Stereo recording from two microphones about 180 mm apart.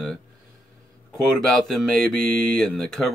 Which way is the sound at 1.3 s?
Centre (ahead or behind).